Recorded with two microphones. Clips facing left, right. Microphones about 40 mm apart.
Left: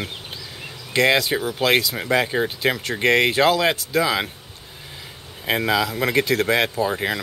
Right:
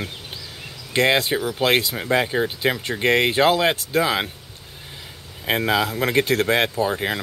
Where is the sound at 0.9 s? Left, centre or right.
Right.